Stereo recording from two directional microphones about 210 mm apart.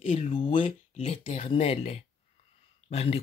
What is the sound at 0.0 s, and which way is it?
Speech, 25° left (ahead or behind).